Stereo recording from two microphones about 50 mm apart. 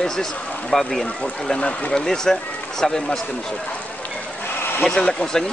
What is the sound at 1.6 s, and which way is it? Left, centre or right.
Speech, centre.